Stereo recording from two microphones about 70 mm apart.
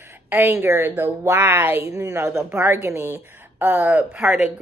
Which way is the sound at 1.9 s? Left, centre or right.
Right.